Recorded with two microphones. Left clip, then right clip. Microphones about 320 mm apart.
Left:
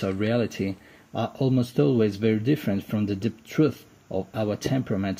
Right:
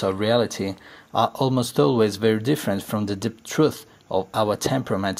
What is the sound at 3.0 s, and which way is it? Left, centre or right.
Speech, right.